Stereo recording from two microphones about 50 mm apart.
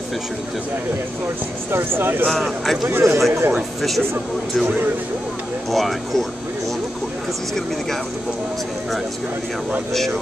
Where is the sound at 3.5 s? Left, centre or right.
Centre.